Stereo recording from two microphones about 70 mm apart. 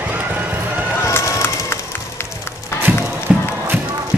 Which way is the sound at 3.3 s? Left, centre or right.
Centre.